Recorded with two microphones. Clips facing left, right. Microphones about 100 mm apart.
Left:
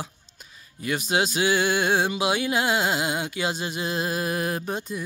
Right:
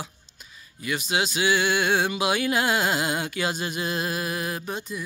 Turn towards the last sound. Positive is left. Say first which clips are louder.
# left 2 dB
turn(degrees=40)  # may be behind; listen again after turning